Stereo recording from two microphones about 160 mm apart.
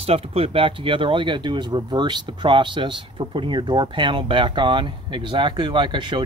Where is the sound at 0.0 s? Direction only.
40° right (ahead or behind).